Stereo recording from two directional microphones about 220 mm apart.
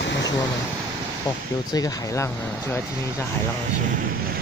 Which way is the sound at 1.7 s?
15° left (ahead or behind).